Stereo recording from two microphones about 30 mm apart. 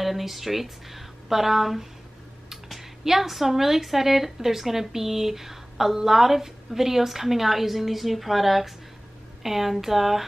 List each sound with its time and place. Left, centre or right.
0.0 s a woman's voice: centre